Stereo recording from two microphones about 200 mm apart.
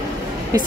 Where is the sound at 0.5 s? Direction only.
15° right (ahead or behind).